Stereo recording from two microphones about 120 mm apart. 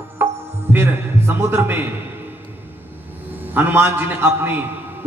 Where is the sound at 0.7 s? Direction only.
20° right (ahead or behind).